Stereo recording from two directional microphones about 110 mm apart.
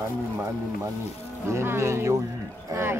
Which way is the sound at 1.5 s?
25° right (ahead or behind).